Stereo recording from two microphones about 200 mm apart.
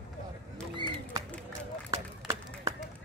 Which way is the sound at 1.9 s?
15° right (ahead or behind).